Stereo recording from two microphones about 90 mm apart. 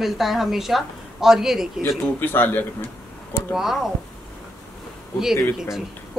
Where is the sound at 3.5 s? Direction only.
5° right (ahead or behind).